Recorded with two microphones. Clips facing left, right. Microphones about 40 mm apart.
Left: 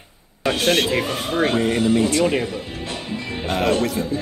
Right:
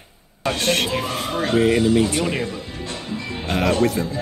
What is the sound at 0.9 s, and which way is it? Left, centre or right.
Speech, left.